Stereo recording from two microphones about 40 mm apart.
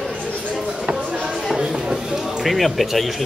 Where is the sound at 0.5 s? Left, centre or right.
Centre.